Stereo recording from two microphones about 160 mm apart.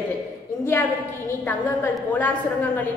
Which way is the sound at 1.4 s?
10° left (ahead or behind).